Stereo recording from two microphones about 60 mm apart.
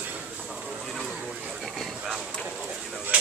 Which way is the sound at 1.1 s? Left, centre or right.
Centre.